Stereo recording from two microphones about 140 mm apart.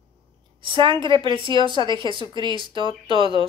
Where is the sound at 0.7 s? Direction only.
35° right (ahead or behind).